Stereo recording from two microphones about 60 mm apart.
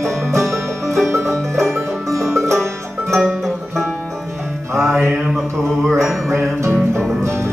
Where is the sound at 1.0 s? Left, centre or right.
Right.